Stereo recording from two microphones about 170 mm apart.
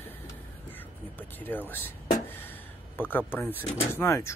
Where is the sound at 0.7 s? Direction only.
10° left (ahead or behind).